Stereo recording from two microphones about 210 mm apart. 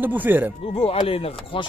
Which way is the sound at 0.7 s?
30° left (ahead or behind).